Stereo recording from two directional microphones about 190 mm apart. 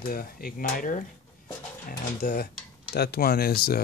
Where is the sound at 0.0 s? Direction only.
50° left (ahead or behind).